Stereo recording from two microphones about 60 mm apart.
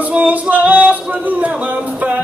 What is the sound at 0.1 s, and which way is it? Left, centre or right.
Music, right.